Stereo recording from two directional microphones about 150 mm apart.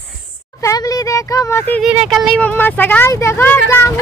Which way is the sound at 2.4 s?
10° left (ahead or behind).